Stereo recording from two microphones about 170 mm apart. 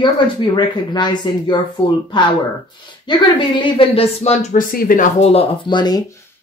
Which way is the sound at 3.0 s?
25° left (ahead or behind).